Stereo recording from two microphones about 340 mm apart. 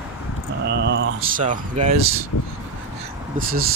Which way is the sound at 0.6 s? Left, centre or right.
Right.